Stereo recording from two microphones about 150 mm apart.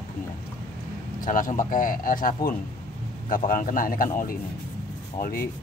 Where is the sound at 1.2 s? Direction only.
65° left (ahead or behind).